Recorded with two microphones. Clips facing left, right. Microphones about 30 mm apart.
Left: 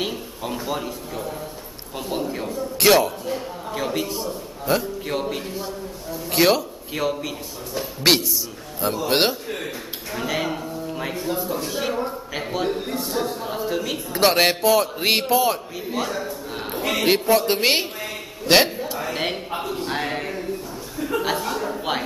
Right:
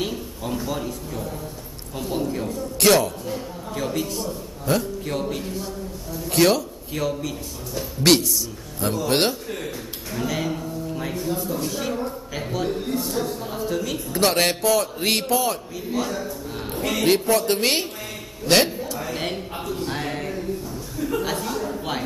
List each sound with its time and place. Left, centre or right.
0.0 s a man's voice: centre